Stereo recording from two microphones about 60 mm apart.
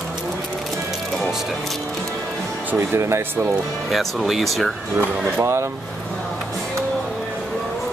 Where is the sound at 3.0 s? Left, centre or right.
Right.